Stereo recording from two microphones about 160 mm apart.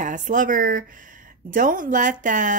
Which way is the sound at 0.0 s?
55° right (ahead or behind).